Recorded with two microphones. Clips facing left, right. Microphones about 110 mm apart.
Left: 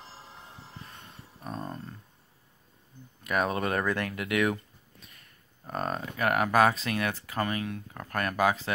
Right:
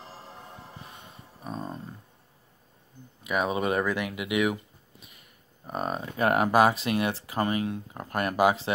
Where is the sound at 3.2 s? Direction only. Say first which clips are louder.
Right 1 dB; 5° right (ahead or behind).